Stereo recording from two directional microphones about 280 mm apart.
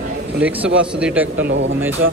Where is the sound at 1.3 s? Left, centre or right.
Right.